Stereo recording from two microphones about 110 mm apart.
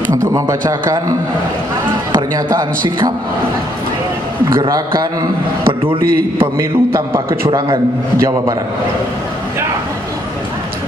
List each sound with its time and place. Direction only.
0.3 s speech: 30° right (ahead or behind)
2.1 s speech: 40° right (ahead or behind)
4.6 s speech: 35° right (ahead or behind)
5.7 s a man's voice: 55° right (ahead or behind)
6.4 s a man's voice: 25° right (ahead or behind)
7.5 s speech: 40° right (ahead or behind)